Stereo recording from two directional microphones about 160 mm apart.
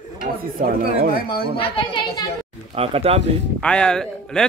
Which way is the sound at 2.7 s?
40° right (ahead or behind).